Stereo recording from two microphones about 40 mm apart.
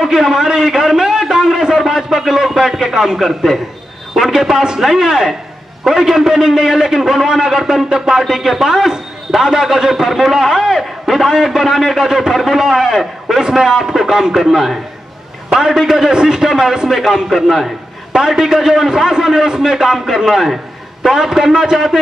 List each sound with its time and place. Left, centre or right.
0.0 s a man's voice: centre
3.2 s a man's voice: centre
18.1 s a man's voice: centre